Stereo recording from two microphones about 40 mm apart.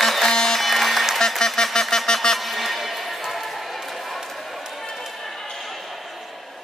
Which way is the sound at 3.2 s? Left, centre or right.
Centre.